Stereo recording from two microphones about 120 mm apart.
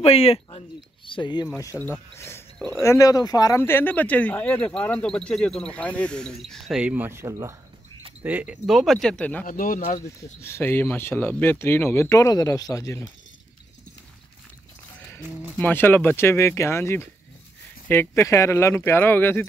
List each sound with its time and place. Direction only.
0.0 s speech: 55° left (ahead or behind)
0.6 s a sound: 45° left (ahead or behind)
1.8 s speech: 20° left (ahead or behind); by 6.8 s 5° left (ahead or behind)
6.8 s speech: 15° right (ahead or behind)
8.2 s speech: 15° right (ahead or behind)
8.6 s speech: centre (ahead or behind); by 13.0 s 25° left (ahead or behind)
15.6 s speech: 15° left (ahead or behind)